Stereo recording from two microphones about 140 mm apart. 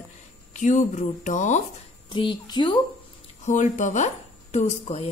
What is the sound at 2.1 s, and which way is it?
Speech, 35° left (ahead or behind).